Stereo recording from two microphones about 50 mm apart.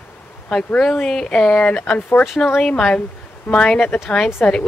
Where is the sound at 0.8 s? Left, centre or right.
Centre.